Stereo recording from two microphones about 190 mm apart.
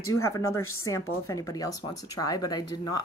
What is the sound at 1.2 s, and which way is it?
Speech, 15° left (ahead or behind).